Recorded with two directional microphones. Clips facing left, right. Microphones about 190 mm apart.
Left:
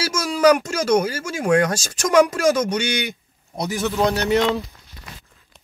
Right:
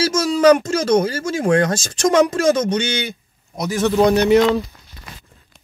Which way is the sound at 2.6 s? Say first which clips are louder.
Right 2 dB; 10° left (ahead or behind).